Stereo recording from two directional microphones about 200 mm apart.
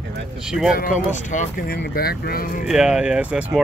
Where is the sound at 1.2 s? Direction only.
40° left (ahead or behind).